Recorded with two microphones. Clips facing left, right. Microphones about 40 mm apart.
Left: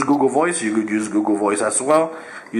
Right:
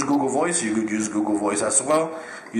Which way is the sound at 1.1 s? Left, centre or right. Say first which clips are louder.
Left 4 dB; centre.